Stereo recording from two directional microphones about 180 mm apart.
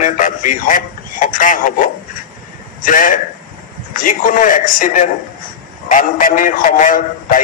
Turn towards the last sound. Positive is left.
turn(degrees=45)  # may be behind; listen again after turning